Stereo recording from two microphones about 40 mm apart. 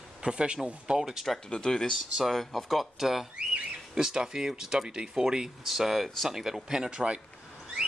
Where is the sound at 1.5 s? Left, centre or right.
Centre.